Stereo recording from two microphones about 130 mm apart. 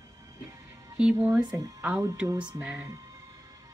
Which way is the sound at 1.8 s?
10° right (ahead or behind).